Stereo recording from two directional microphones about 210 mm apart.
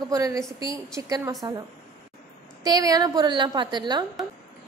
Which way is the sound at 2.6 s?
20° right (ahead or behind).